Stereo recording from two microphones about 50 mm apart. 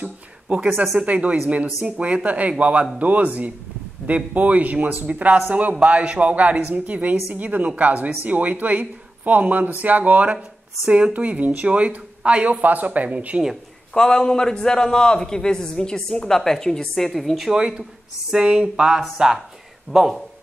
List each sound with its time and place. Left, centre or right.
0.0 s speech: right
12.6 s speech: right
13.9 s a man's voice: centre
17.6 s speech: centre